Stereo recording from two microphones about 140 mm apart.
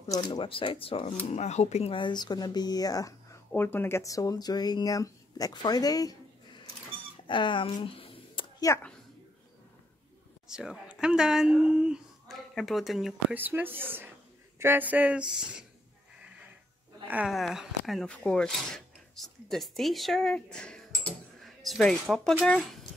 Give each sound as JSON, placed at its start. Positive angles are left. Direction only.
{"t": 0.1, "sound": "speech", "side_deg": 30}
{"t": 1.3, "sound": "speech", "side_deg": 50}
{"t": 7.2, "sound": "a sound", "side_deg": 35}
{"t": 8.5, "sound": "speech", "side_deg": 20}
{"t": 10.5, "sound": "speech", "side_deg": -5}
{"t": 13.3, "sound": "speech", "side_deg": -15}
{"t": 17.1, "sound": "speech", "side_deg": -5}